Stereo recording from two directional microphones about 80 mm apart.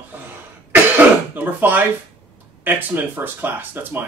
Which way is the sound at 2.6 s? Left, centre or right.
Right.